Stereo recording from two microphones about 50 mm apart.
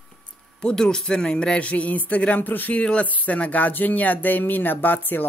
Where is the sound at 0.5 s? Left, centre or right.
Centre.